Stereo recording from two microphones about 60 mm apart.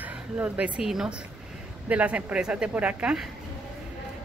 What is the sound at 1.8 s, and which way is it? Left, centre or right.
Speech, right.